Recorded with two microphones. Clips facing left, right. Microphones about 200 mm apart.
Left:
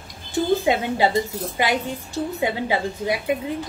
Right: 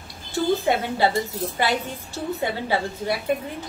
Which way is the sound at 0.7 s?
15° left (ahead or behind).